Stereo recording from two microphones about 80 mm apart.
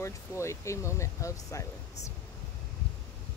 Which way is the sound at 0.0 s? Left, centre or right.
Left.